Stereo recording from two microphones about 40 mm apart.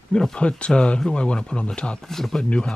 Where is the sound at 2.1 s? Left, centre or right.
Centre.